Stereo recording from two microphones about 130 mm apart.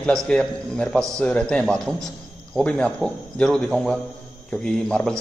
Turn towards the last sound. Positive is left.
turn(degrees=5)  # may be behind; listen again after turning